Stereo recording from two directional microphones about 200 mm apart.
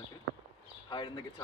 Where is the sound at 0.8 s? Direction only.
25° left (ahead or behind).